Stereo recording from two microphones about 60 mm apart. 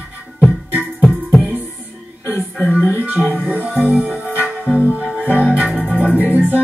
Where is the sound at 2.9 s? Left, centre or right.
Right.